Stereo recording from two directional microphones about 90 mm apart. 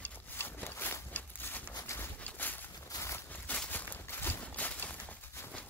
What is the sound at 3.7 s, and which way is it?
Walk, 20° left (ahead or behind).